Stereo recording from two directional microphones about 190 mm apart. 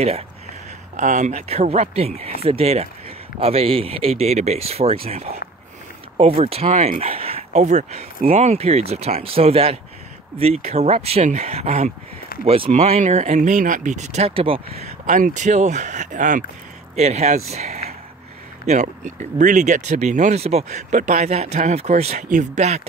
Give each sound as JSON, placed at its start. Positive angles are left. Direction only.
{"t": 0.9, "sound": "speech", "side_deg": -40}
{"t": 15.0, "sound": "speech", "side_deg": -40}